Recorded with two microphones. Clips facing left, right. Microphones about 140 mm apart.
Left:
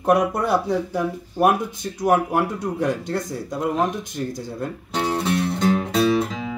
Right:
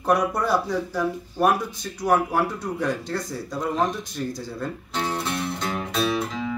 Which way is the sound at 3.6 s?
5° left (ahead or behind).